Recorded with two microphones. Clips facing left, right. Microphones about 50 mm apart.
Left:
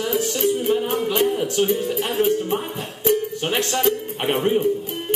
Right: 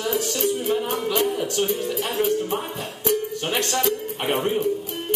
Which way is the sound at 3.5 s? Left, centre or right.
Centre.